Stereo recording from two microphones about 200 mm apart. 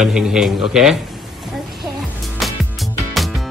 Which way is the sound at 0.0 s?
5° right (ahead or behind).